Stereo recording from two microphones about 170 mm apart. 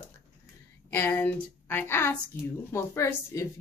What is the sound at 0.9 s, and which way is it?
A woman's voice, 15° left (ahead or behind).